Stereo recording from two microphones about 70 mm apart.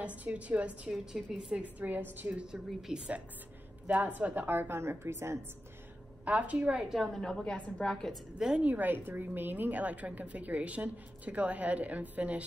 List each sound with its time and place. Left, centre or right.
0.0 s a woman's voice: centre
0.9 s a woman's voice: centre
1.5 s a woman's voice: right
2.2 s a woman's voice: centre; by 5.4 s right
6.2 s a woman's voice: centre
7.0 s a woman's voice: centre
8.4 s a woman's voice: centre